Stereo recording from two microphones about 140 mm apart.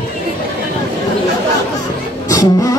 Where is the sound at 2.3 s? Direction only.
25° left (ahead or behind).